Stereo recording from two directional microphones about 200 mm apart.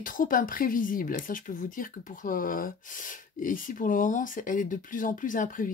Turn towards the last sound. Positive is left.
turn(degrees=40)  # may be behind; listen again after turning